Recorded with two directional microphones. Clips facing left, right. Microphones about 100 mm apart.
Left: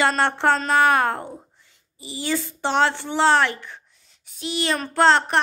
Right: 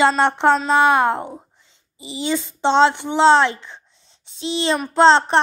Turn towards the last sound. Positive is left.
turn(degrees=-25)  # may be behind; listen again after turning